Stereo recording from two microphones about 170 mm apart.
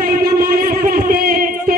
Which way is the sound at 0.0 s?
60° right (ahead or behind).